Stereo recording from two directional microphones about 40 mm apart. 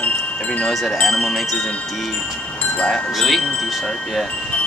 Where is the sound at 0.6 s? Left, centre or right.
Centre.